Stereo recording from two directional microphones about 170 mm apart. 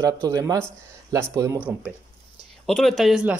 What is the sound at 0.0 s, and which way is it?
Speech, 20° right (ahead or behind).